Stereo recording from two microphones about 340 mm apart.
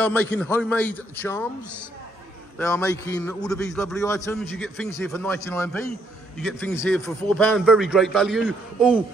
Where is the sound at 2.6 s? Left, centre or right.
Centre.